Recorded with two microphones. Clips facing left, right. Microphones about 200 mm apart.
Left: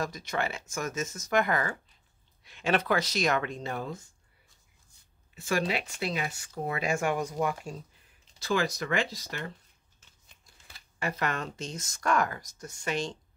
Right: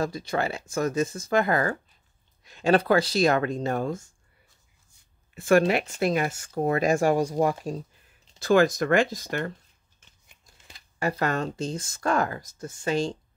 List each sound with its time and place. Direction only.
0.0 s speech: 30° right (ahead or behind); by 4.1 s 45° right (ahead or behind)
5.3 s speech: 55° right (ahead or behind); by 7.8 s 35° right (ahead or behind)
8.4 s speech: 50° right (ahead or behind)
11.0 s speech: 35° right (ahead or behind)